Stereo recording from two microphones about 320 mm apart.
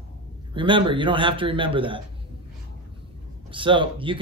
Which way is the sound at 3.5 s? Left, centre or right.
Centre.